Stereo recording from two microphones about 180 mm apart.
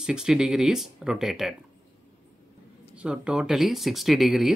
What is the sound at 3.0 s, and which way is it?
Speech, 5° right (ahead or behind).